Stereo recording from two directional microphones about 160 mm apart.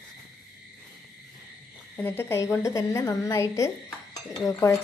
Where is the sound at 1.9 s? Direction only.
10° left (ahead or behind).